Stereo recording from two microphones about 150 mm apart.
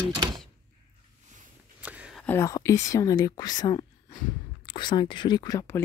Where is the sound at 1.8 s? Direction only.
10° right (ahead or behind).